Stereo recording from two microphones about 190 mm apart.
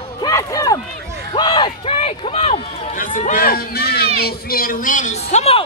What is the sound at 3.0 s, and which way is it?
Speech, 45° left (ahead or behind).